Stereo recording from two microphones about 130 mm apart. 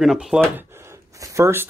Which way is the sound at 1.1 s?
25° right (ahead or behind).